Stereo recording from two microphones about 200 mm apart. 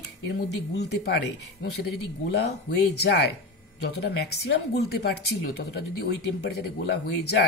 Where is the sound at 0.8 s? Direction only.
55° left (ahead or behind).